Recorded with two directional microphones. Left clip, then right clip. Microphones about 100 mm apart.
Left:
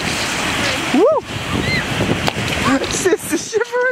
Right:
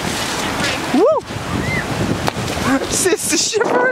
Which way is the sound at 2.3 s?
Centre (ahead or behind).